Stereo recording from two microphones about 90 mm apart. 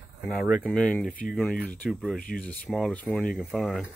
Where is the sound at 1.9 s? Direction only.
10° right (ahead or behind).